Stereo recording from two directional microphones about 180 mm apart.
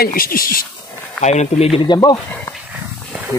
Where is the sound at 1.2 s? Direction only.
40° left (ahead or behind).